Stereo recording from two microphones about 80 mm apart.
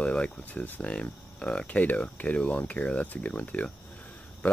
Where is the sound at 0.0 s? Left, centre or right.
Centre.